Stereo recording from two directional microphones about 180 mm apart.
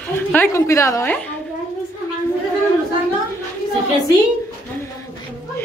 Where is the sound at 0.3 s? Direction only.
15° left (ahead or behind).